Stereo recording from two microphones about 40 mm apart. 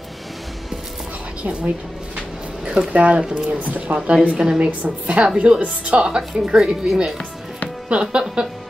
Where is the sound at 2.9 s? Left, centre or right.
Right.